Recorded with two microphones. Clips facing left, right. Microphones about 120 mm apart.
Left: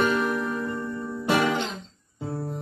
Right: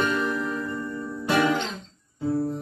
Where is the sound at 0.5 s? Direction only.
25° left (ahead or behind).